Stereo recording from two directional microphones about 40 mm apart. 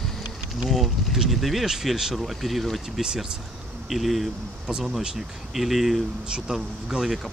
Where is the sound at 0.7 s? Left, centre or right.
Centre.